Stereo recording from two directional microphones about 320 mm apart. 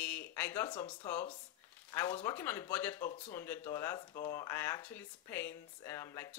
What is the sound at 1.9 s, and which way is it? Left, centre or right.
Speech, centre.